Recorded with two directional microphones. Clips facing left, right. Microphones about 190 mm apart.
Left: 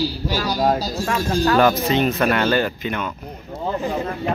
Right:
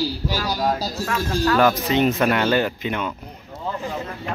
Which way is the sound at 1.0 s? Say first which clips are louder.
Left 2 dB; 30° left (ahead or behind).